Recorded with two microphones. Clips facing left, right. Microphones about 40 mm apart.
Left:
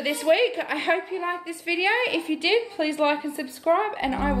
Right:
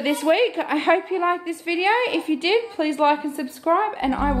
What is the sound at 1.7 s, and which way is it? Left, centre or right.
A woman's voice, centre.